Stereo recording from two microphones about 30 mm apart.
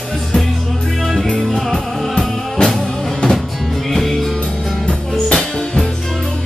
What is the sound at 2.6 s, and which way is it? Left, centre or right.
Music, left.